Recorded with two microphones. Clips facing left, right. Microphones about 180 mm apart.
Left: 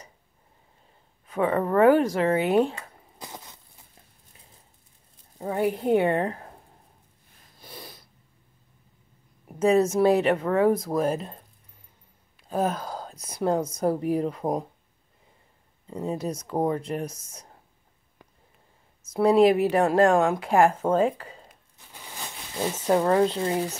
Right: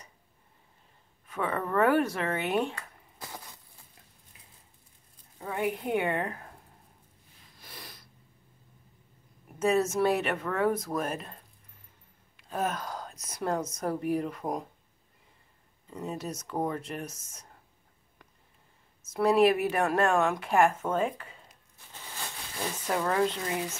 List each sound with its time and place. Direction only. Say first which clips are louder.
1.2 s a woman's voice: left 7 dB; 35° left (ahead or behind)
2.7 s a sound: left 3 dB; 20° left (ahead or behind)
5.4 s a woman's voice: left 6 dB; 35° left (ahead or behind)
7.7 s snort: left 5 dB; 25° left (ahead or behind)
9.5 s a woman's voice: left 6 dB; 35° left (ahead or behind)
12.4 s a woman's voice: left 5 dB; 30° left (ahead or behind)
15.9 s a woman's voice: left 6 dB; 30° left (ahead or behind)
19.1 s a woman's voice: left 5 dB; 30° left (ahead or behind)
21.9 s a sound: left 2 dB; 15° left (ahead or behind)
22.9 s a woman's voice: left 6 dB; 35° left (ahead or behind)